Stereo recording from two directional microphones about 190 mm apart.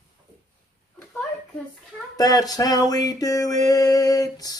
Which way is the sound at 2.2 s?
20° left (ahead or behind).